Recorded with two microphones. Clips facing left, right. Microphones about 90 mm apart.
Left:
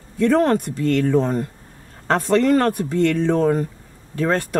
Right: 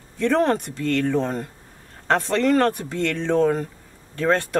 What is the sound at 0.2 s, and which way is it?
Speech, 5° left (ahead or behind).